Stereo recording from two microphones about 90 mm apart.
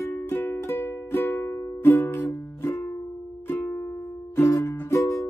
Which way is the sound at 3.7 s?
25° left (ahead or behind).